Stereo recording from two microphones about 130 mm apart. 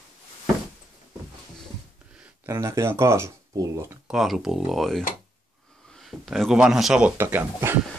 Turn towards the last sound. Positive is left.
turn(degrees=-15)  # may be behind; listen again after turning